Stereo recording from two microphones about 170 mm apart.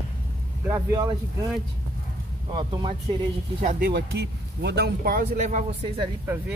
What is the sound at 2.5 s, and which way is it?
Speech, 30° right (ahead or behind).